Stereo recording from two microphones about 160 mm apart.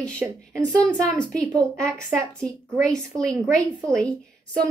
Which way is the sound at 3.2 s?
5° left (ahead or behind).